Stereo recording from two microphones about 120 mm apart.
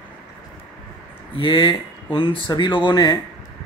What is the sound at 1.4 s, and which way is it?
Speech, 40° left (ahead or behind).